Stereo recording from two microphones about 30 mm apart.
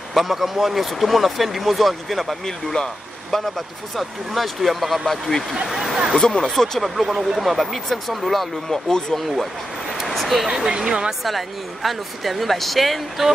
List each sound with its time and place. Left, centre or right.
0.1 s speech: centre
2.4 s speech: centre
3.3 s speech: centre
6.1 s speech: left
6.4 s speech: centre
7.0 s speech: centre
8.6 s speech: centre
10.0 s speech: centre
10.5 s speech: centre
11.2 s speech: centre